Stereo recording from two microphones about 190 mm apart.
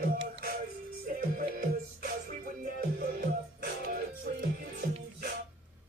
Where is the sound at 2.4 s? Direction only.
50° right (ahead or behind).